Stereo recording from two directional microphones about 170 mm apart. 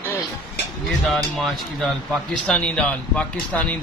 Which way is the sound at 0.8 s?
Centre (ahead or behind).